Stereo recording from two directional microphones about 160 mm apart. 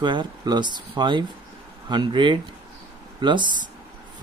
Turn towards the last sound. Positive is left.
turn(degrees=-30)  # may be behind; listen again after turning